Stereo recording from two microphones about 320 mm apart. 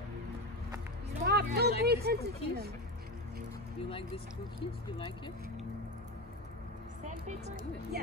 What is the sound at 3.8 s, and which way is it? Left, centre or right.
Speech, centre.